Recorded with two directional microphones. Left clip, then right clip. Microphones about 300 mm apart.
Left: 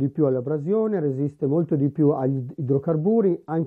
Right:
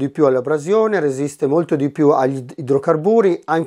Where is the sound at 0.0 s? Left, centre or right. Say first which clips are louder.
Right 7 dB; centre.